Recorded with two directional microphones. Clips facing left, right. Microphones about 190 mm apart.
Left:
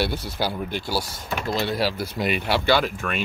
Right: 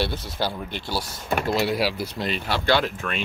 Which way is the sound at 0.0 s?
10° left (ahead or behind).